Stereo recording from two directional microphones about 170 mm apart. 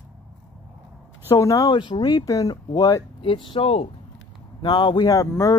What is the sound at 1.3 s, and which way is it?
Speech, 20° left (ahead or behind).